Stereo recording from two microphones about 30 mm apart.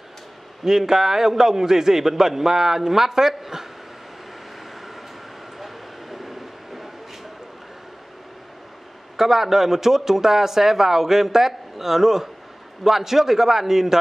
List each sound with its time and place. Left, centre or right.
0.7 s speech: centre
5.6 s train: centre
9.1 s speech: centre